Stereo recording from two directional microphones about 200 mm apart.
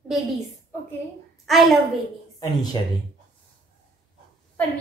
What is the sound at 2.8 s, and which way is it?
Speech, 20° left (ahead or behind).